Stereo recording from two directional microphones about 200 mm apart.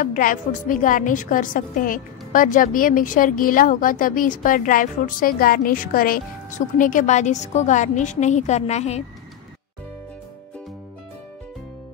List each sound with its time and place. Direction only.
0.0 s a woman's voice: 45° left (ahead or behind)